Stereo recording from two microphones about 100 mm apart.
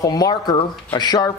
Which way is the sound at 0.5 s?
50° left (ahead or behind).